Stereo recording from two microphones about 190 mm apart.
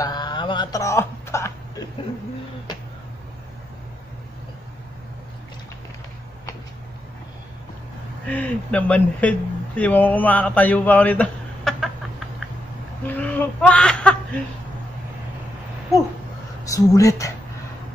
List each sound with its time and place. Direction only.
0.0 s a sound: 20° left (ahead or behind)
8.3 s speech: 5° left (ahead or behind)
13.0 s whimper: 10° left (ahead or behind)
16.6 s speech: 15° left (ahead or behind)